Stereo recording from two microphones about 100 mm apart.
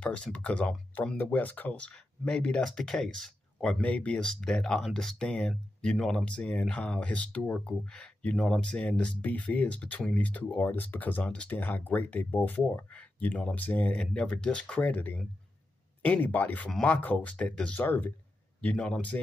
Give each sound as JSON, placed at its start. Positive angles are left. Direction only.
{"t": 0.0, "sound": "speech", "side_deg": 10}